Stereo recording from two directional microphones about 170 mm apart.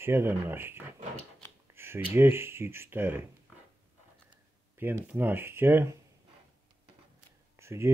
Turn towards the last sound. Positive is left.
turn(degrees=-15)  # may be behind; listen again after turning